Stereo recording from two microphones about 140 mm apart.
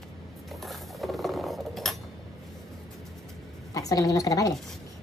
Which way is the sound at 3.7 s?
25° left (ahead or behind).